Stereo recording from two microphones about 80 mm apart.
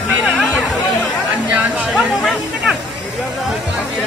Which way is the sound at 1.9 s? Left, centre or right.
Centre.